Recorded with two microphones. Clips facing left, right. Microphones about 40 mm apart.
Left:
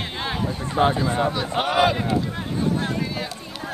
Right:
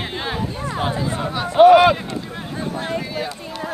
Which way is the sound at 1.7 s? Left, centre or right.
Right.